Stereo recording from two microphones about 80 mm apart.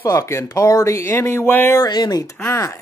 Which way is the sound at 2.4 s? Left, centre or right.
Left.